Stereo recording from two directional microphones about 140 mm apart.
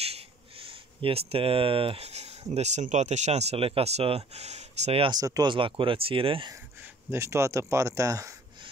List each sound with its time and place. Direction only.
0.0 s speech: 45° right (ahead or behind)
5.0 s speech: 25° right (ahead or behind)
5.5 s speech: 35° right (ahead or behind)
6.5 s speech: 15° right (ahead or behind)